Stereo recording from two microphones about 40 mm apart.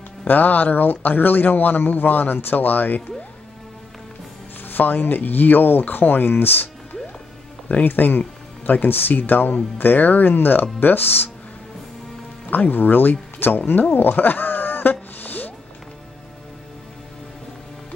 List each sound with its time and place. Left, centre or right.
0.3 s speech: left
4.6 s speech: left
7.8 s speech: left
12.4 s speech: left
13.9 s music: left